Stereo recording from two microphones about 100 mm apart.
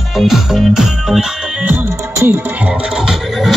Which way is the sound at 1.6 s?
20° right (ahead or behind).